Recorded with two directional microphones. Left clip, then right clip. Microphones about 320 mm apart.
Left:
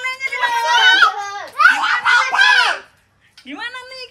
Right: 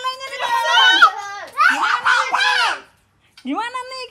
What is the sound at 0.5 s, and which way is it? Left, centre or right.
Children playing, centre.